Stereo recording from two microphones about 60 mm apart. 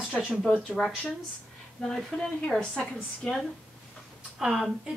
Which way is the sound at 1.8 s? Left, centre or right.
Centre.